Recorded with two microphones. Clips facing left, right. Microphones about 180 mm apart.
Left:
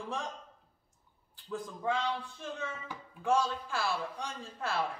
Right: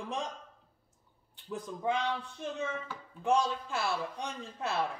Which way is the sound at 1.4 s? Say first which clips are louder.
Right 1 dB; 20° right (ahead or behind).